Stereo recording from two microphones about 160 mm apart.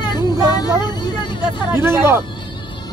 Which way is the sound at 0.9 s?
25° left (ahead or behind).